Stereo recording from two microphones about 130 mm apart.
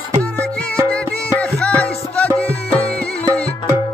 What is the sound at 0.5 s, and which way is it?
Music, 10° left (ahead or behind).